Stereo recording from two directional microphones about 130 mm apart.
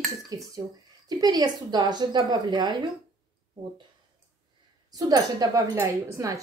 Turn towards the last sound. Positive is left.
turn(degrees=-25)  # may be behind; listen again after turning